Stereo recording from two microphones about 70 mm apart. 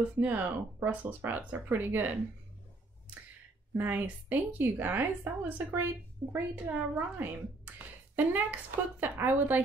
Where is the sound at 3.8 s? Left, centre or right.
Right.